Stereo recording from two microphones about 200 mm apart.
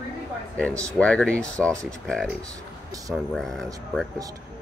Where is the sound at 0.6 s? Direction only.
5° left (ahead or behind).